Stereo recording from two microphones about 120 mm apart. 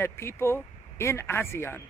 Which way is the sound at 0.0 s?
20° left (ahead or behind).